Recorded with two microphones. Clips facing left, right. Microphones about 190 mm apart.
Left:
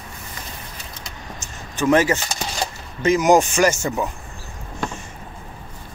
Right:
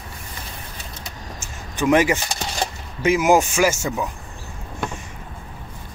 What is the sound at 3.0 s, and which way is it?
Speech, 10° right (ahead or behind).